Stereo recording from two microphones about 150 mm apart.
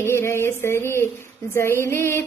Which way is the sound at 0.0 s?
15° left (ahead or behind).